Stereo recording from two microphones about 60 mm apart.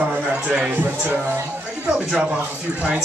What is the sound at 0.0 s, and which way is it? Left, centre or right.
Music, right.